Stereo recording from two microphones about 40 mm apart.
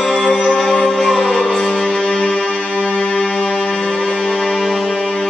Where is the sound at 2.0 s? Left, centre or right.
Left.